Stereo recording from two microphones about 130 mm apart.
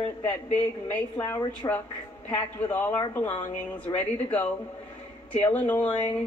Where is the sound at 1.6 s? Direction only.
30° left (ahead or behind).